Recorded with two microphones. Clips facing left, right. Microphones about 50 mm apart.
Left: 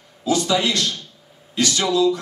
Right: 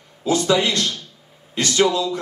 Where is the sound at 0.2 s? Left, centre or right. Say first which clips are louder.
Right 1 dB; right.